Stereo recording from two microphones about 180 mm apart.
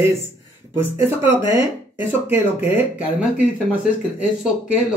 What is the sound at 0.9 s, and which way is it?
Speech, 15° right (ahead or behind).